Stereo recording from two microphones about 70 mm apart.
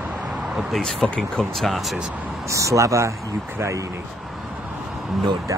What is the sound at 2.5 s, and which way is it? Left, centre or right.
Speech, right.